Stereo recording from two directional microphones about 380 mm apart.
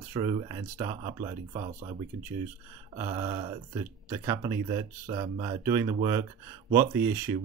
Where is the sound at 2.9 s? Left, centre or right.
Centre.